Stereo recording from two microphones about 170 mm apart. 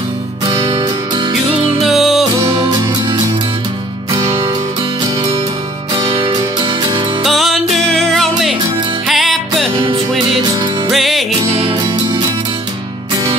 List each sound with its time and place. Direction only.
0.5 s music: 25° right (ahead or behind)
1.8 s music: centre (ahead or behind)
2.5 s music: 25° right (ahead or behind)
6.1 s music: 30° right (ahead or behind)
7.2 s music: centre (ahead or behind)
10.9 s music: centre (ahead or behind)
11.6 s music: 25° right (ahead or behind)